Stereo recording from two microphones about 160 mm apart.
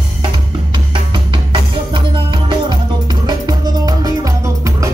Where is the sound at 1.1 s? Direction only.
30° right (ahead or behind).